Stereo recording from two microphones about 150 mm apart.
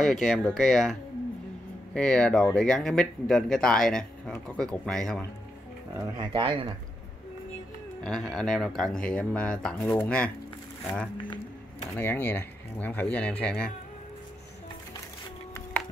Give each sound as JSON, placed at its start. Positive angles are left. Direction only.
{"t": 0.0, "sound": "speech", "side_deg": 0}
{"t": 2.0, "sound": "speech", "side_deg": 5}
{"t": 5.9, "sound": "speech", "side_deg": -30}
{"t": 8.0, "sound": "speech", "side_deg": 5}
{"t": 12.0, "sound": "speech", "side_deg": 15}